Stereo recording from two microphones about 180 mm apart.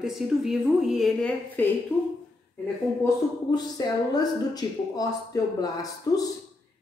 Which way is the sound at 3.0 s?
20° left (ahead or behind).